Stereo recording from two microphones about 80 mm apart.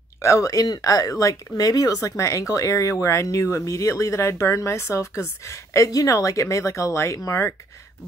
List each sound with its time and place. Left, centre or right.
0.2 s speech: left